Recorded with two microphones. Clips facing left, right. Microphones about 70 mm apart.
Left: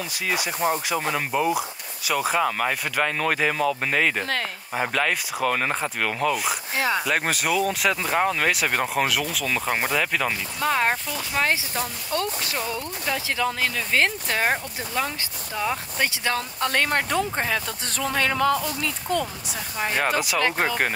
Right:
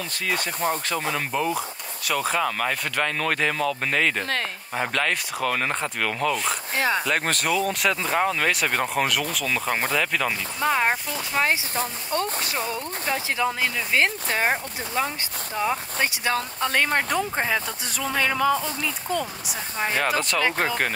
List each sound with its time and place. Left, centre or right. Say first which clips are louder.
0.1 s speech: even; centre
10.6 s speech: even; centre
11.7 s speech: right 1 dB; right
13.4 s speech: even; centre
16.7 s speech: even; centre
18.5 s speech: even; right
18.8 s speech: left 1 dB; centre
20.2 s speech: even; centre